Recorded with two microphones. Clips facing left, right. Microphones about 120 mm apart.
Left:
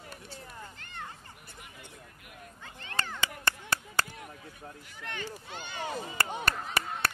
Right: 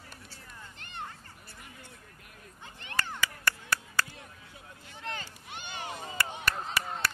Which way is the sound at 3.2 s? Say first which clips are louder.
Even; 25° left (ahead or behind).